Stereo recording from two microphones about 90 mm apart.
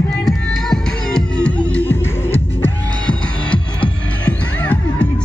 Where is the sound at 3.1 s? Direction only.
15° left (ahead or behind).